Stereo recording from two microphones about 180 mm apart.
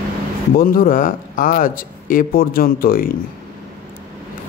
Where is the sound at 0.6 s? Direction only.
50° left (ahead or behind).